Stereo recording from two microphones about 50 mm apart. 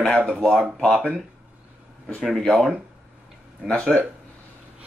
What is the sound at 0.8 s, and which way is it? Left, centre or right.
Speech, centre.